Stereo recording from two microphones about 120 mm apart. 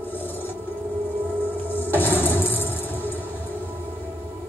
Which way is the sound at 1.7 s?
15° left (ahead or behind).